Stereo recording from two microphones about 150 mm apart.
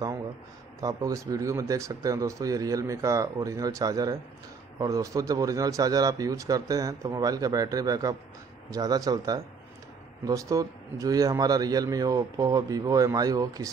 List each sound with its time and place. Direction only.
0.7 s a man's voice: 25° right (ahead or behind)